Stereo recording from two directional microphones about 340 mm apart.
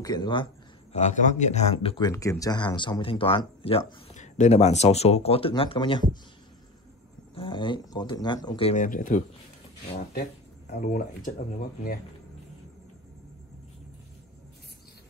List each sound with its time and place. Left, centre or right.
0.0 s speech: centre
7.3 s speech: centre
10.7 s speech: left